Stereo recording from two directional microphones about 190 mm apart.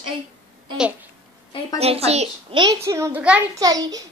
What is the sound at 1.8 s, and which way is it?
A child's voice, 30° right (ahead or behind).